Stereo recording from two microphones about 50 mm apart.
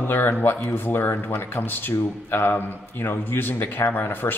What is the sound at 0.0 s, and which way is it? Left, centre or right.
A man's voice, left.